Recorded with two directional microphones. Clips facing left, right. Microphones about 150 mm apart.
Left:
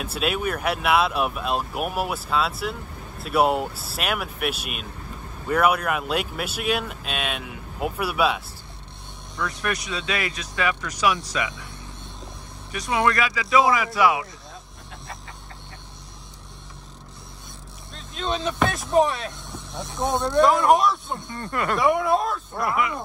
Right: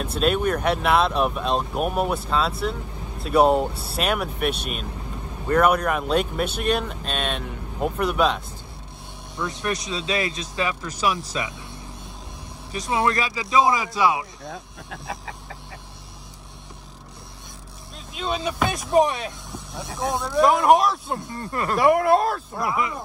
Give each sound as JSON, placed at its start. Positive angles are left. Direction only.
{"t": 0.0, "sound": "speech", "side_deg": 5}
{"t": 9.4, "sound": "speech", "side_deg": -25}
{"t": 12.7, "sound": "speech", "side_deg": -25}
{"t": 17.9, "sound": "speech", "side_deg": -5}